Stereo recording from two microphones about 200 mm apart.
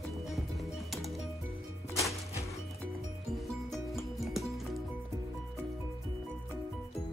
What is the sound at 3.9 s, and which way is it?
Music, centre (ahead or behind).